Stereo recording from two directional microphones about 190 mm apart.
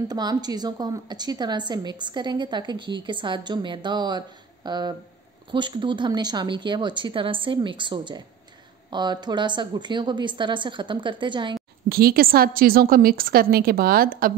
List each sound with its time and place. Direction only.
0.1 s a woman's voice: 20° right (ahead or behind)
11.9 s a woman's voice: 55° right (ahead or behind)